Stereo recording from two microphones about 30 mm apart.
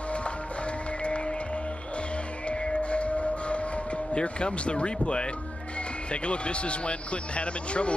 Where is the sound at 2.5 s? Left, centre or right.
Left.